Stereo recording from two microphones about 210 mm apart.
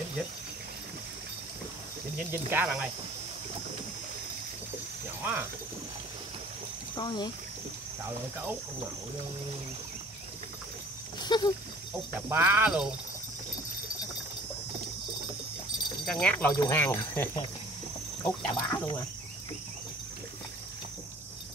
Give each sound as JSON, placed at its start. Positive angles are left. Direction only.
{"t": 2.3, "sound": "speech", "side_deg": -10}
{"t": 5.2, "sound": "speech", "side_deg": -10}
{"t": 7.0, "sound": "speech", "side_deg": 20}
{"t": 11.2, "sound": "speech", "side_deg": 20}
{"t": 12.3, "sound": "speech", "side_deg": -10}
{"t": 16.1, "sound": "speech", "side_deg": 5}